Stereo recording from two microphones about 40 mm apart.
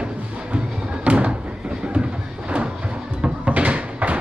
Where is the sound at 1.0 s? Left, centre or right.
Right.